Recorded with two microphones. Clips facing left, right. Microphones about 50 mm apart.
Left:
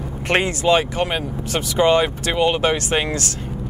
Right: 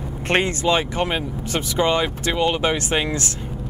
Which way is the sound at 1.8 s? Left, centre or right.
Centre.